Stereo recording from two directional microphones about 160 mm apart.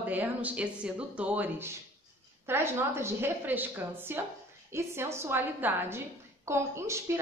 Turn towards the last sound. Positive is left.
turn(degrees=-15)  # may be behind; listen again after turning